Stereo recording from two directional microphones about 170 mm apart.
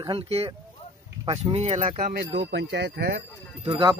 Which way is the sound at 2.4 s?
90° right.